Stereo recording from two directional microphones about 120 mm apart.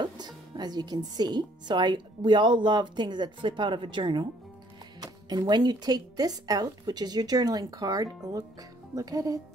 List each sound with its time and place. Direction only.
0.0 s speech: 35° right (ahead or behind)